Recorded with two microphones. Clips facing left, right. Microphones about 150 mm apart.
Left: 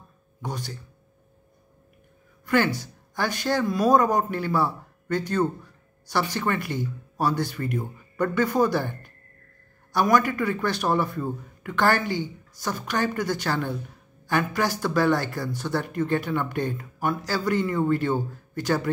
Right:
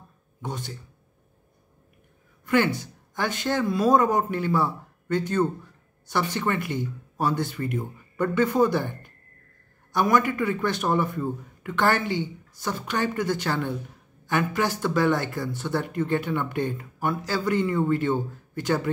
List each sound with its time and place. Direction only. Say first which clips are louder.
0.4 s a man's voice: left 1 dB; 25° right (ahead or behind)
2.4 s a man's voice: even; 25° right (ahead or behind)
9.9 s a man's voice: left 1 dB; 25° right (ahead or behind)